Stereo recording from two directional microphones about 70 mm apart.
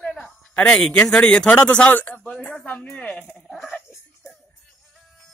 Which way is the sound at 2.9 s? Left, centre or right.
Left.